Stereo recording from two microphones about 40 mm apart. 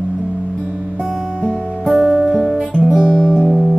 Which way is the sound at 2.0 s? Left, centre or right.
Centre.